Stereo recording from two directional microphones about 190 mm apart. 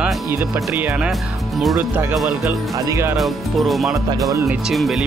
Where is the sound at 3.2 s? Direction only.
Centre (ahead or behind).